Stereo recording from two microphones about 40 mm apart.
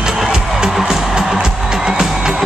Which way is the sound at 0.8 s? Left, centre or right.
Centre.